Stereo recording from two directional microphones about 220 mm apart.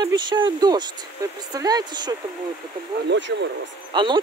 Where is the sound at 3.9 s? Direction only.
20° right (ahead or behind).